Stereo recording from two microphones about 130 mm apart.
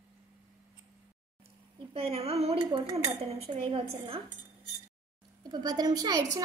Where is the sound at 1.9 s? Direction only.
50° right (ahead or behind).